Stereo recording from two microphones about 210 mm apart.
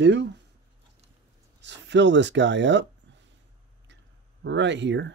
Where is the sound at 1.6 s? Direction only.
55° right (ahead or behind).